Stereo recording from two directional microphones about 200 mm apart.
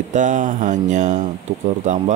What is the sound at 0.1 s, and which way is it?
Speech, 40° right (ahead or behind).